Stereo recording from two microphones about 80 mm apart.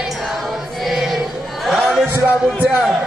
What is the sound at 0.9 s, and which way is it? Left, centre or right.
Music, centre.